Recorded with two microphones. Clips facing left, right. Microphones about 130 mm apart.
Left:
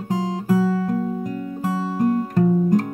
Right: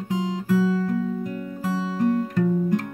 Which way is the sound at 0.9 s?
40° left (ahead or behind).